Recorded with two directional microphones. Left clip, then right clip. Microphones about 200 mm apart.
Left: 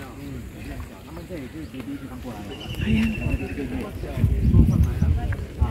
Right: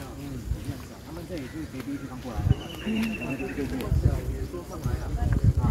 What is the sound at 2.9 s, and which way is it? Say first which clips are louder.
Speech: left 5 dB; 5° right (ahead or behind).